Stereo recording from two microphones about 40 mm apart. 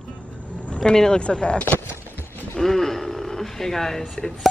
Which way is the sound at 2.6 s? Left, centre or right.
Centre.